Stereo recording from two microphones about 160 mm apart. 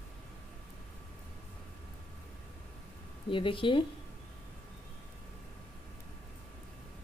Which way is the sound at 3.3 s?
30° left (ahead or behind).